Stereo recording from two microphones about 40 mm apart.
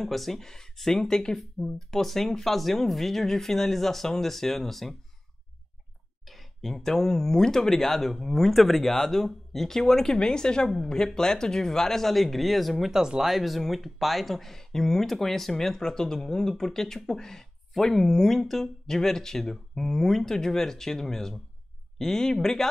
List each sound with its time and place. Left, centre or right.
0.0 s speech: centre
6.3 s speech: centre